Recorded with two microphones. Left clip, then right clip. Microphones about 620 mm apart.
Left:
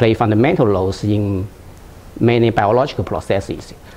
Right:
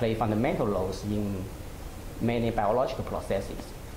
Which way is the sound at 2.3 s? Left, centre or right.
Left.